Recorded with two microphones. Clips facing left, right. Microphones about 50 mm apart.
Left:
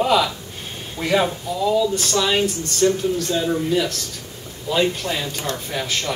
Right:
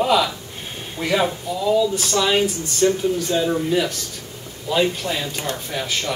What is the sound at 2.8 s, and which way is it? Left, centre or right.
A man's voice, centre.